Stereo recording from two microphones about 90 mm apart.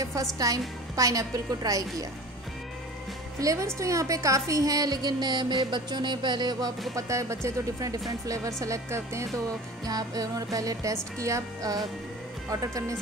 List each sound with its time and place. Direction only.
0.0 s music: 40° right (ahead or behind)
3.3 s a woman's voice: 35° right (ahead or behind)
7.0 s music: 35° right (ahead or behind)